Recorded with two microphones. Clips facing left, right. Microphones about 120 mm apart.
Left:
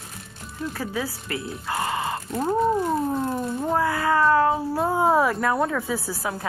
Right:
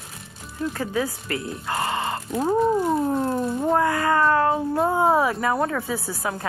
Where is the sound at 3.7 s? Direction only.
45° right (ahead or behind).